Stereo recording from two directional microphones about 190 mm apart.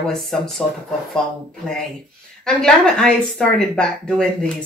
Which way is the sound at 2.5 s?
5° left (ahead or behind).